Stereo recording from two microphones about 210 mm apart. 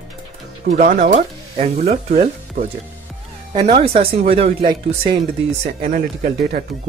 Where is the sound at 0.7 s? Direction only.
40° right (ahead or behind).